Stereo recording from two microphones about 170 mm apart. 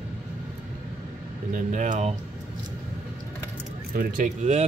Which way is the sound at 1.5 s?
50° right (ahead or behind).